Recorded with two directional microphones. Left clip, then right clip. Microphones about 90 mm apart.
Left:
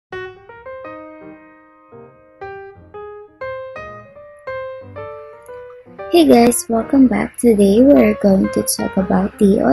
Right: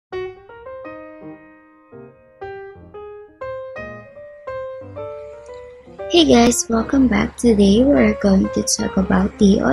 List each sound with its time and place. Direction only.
0.8 s music: 25° right (ahead or behind)
4.5 s music: 30° right (ahead or behind)
4.9 s music: 20° right (ahead or behind)
6.0 s speech: 10° left (ahead or behind)